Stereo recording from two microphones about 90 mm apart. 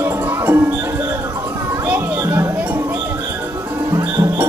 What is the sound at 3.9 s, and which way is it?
Music, 25° right (ahead or behind).